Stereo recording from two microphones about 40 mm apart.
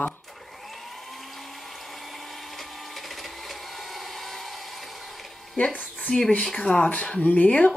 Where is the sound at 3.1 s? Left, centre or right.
Centre.